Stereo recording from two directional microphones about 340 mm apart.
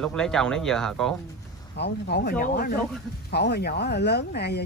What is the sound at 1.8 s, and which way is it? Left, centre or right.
Speech, left.